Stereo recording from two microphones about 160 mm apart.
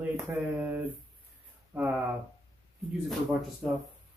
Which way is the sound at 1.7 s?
10° right (ahead or behind).